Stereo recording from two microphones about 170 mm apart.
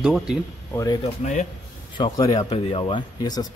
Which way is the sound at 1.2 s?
45° left (ahead or behind).